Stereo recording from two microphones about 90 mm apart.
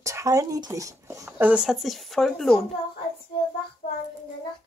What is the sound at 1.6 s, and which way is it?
Speech, centre (ahead or behind).